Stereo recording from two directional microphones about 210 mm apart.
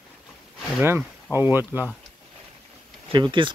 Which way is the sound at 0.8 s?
10° right (ahead or behind).